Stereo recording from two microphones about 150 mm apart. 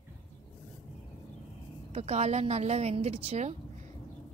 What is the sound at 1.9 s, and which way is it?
A woman's voice, 45° right (ahead or behind).